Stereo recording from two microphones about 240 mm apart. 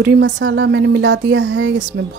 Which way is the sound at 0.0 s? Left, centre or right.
Right.